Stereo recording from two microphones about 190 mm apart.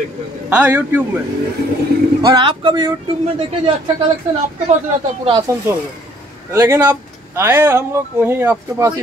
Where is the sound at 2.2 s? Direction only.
20° right (ahead or behind).